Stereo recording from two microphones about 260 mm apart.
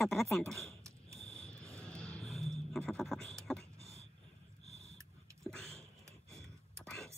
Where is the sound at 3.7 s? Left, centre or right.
Right.